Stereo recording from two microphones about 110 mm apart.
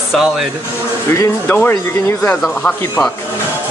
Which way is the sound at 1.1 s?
25° left (ahead or behind).